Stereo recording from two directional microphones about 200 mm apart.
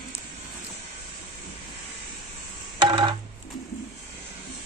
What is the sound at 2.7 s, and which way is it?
Music, 25° right (ahead or behind).